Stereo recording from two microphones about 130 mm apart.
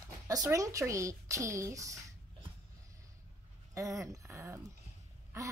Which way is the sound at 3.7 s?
25° right (ahead or behind).